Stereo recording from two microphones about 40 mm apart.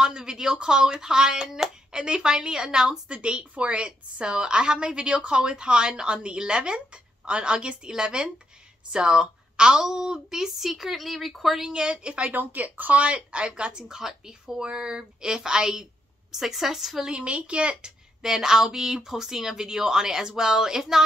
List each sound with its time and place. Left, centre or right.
0.0 s speech: centre
3.1 s a woman's voice: right; by 11.6 s centre
11.6 s a woman's voice: centre
12.3 s speech: right
13.0 s a woman's voice: right
13.8 s a woman's voice: centre
17.1 s a woman's voice: right
18.2 s speech: centre